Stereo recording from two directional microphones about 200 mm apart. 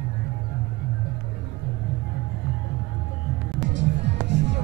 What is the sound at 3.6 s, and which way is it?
Music, 65° right (ahead or behind).